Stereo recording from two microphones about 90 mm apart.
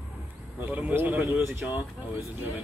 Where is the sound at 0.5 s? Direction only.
15° right (ahead or behind).